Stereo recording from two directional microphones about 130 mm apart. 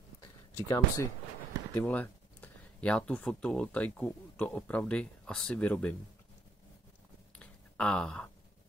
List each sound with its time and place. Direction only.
0.7 s speech: 25° left (ahead or behind)
1.8 s speech: 10° left (ahead or behind)
7.3 s a sound: 10° left (ahead or behind)